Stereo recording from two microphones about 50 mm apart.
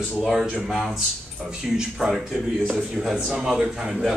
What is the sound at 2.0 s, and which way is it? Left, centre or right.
Speech, centre.